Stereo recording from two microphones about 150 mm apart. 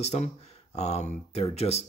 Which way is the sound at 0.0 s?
50° left (ahead or behind).